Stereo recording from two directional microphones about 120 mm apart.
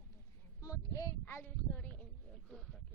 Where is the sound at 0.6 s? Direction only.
30° left (ahead or behind).